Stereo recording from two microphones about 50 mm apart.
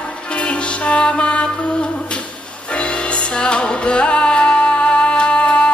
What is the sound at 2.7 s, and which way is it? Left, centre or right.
Music, left.